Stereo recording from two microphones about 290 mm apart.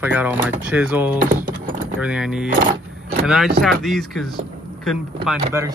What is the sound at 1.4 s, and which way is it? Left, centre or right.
Typing, right.